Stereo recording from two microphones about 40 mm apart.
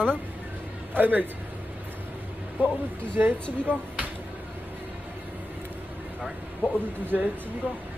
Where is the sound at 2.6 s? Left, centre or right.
Right.